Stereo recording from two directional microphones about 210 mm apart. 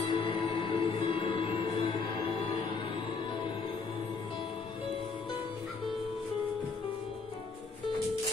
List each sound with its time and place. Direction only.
0.1 s music: 25° left (ahead or behind)